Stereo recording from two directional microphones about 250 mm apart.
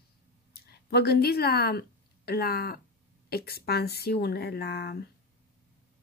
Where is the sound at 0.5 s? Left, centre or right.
Left.